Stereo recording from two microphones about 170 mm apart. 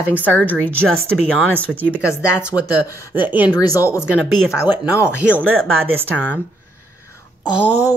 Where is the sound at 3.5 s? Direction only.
20° left (ahead or behind).